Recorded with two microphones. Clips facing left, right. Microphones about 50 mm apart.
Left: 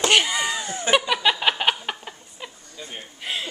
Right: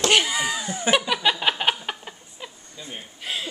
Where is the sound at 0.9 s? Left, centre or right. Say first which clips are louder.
Left 2 dB; centre.